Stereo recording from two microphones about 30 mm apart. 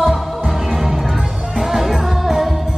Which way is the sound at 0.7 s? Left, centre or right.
Centre.